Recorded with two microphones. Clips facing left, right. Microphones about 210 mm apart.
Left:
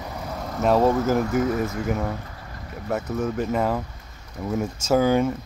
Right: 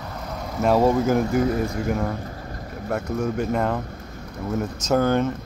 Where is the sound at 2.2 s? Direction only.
40° right (ahead or behind).